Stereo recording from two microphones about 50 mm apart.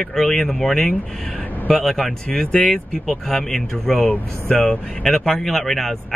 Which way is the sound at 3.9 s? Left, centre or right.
Left.